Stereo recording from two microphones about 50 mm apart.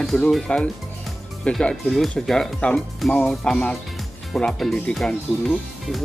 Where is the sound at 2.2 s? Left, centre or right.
Centre.